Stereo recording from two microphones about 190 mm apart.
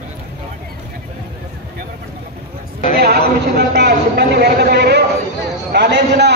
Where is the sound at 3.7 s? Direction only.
60° right (ahead or behind).